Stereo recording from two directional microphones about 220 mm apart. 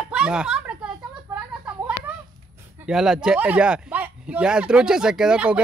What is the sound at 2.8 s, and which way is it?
Speech, 5° right (ahead or behind).